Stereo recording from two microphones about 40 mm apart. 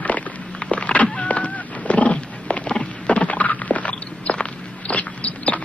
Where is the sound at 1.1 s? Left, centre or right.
Left.